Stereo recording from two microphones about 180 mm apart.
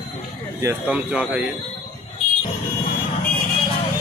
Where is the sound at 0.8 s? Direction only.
5° right (ahead or behind).